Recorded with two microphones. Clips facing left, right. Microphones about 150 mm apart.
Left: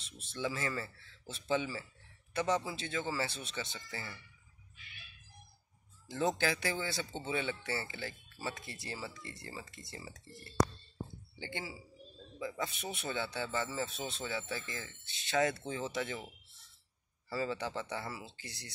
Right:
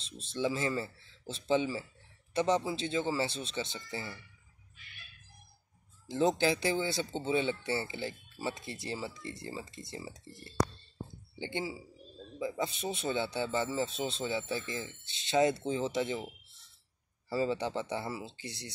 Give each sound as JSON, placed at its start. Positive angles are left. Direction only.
{"t": 0.0, "sound": "speech", "side_deg": -25}
{"t": 6.0, "sound": "speech", "side_deg": -25}
{"t": 17.3, "sound": "speech", "side_deg": -25}